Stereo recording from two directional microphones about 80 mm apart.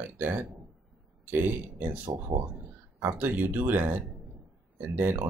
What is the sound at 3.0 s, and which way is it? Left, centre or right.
Speech, right.